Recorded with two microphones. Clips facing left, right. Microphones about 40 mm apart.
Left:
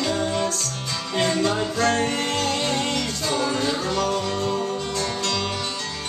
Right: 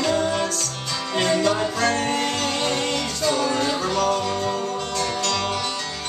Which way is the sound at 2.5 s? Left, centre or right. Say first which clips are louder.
Even; right.